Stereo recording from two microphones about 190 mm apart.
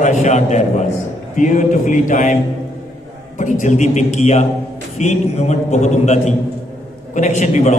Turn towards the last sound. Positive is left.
turn(degrees=40)  # may be behind; listen again after turning